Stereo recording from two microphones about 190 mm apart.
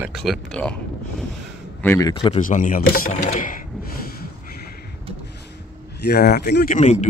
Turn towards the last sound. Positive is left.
turn(degrees=40)  # may be behind; listen again after turning